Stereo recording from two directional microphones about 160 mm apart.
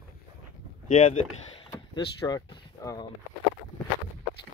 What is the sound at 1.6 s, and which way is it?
Door, 25° left (ahead or behind).